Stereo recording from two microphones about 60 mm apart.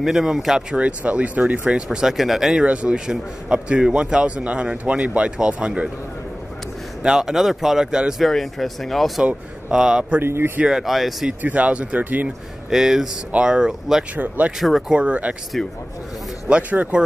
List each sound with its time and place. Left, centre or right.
0.0 s speech: centre
2.6 s a man's voice: centre
7.0 s speech: centre
8.2 s speech: centre
9.2 s speech: centre
10.2 s speech: right
10.6 s speech: centre
11.4 s a man's voice: right
12.6 s speech: centre
14.1 s a man's voice: right
15.5 s speech: centre
16.4 s speech: right